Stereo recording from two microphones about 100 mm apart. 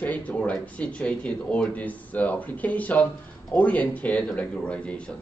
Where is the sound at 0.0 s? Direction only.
15° left (ahead or behind).